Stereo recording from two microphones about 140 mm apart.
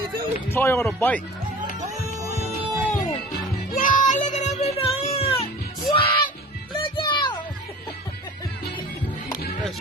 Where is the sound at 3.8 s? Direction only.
70° left (ahead or behind); by 5.4 s 45° left (ahead or behind).